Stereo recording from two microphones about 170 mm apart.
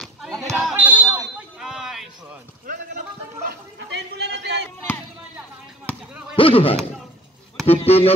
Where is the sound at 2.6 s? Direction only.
50° right (ahead or behind).